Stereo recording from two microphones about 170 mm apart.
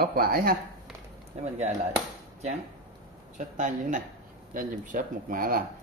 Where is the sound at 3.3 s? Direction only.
45° right (ahead or behind).